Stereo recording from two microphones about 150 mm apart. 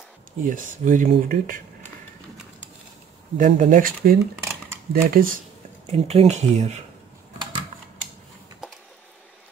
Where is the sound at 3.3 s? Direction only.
60° right (ahead or behind).